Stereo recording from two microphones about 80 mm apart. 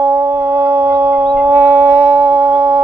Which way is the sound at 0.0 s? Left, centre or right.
Right.